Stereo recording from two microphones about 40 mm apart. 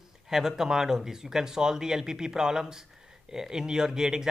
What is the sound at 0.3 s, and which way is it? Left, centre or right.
Speech, centre.